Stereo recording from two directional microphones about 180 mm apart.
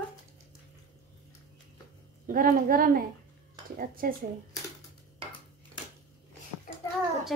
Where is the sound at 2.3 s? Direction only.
50° right (ahead or behind).